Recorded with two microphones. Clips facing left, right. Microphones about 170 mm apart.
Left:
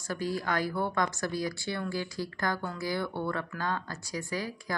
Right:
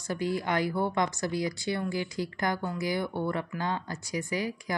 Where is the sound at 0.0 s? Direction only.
20° right (ahead or behind).